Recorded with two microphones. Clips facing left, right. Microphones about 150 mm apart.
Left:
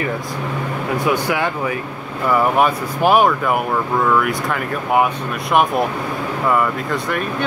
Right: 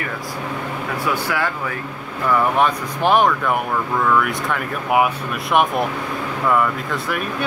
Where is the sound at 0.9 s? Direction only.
20° left (ahead or behind).